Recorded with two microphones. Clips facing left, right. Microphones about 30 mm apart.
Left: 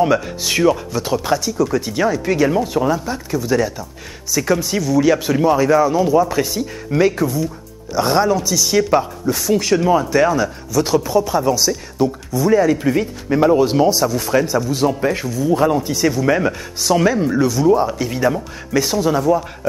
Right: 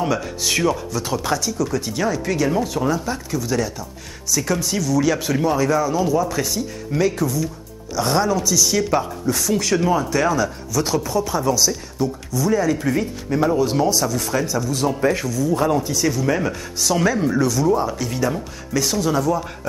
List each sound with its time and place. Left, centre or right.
0.0 s speech: centre
14.9 s speech: centre
15.2 s speech: left
15.5 s speech: centre